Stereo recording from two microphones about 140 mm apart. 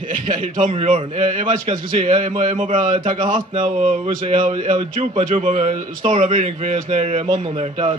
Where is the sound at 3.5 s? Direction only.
50° right (ahead or behind).